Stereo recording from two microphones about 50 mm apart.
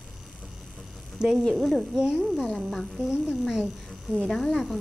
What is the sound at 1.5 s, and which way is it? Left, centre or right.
Speech, centre.